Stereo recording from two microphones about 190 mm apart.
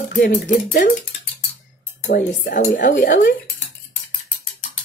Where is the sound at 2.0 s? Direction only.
55° left (ahead or behind).